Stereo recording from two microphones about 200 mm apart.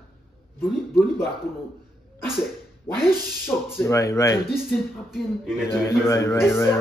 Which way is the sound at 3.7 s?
15° left (ahead or behind).